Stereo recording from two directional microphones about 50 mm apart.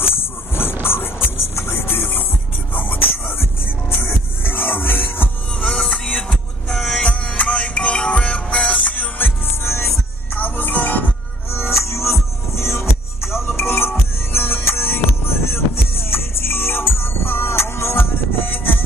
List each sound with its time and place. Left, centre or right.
0.0 s a sound: left
0.8 s music: left
5.6 s music: centre; by 9.3 s left
9.5 s music: left
10.3 s music: left
11.5 s music: left